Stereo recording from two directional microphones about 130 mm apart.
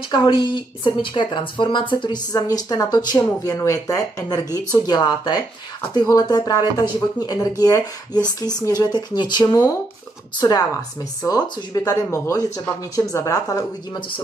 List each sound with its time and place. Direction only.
0.1 s speech: 40° left (ahead or behind); by 9.8 s 25° left (ahead or behind)
11.2 s speech: 30° left (ahead or behind)